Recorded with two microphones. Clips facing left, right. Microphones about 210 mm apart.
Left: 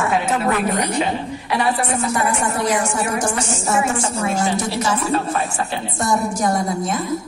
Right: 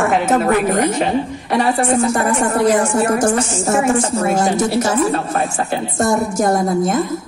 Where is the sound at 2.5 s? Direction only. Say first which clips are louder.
Right 6 dB; 55° right (ahead or behind).